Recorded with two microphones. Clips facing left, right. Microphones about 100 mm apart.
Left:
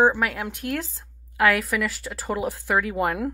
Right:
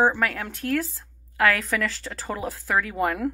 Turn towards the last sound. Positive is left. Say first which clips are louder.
# even
turn(degrees=15)  # may be behind; listen again after turning